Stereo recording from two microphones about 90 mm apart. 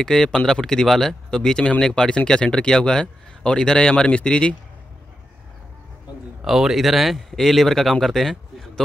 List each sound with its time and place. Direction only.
0.0 s speech: 5° left (ahead or behind)
6.4 s speech: 5° right (ahead or behind)